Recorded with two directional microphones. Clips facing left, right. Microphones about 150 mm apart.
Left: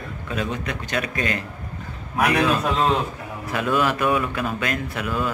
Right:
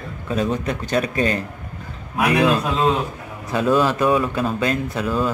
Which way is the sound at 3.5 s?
30° right (ahead or behind).